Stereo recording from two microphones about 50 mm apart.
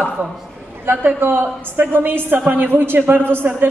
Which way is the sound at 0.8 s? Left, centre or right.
Right.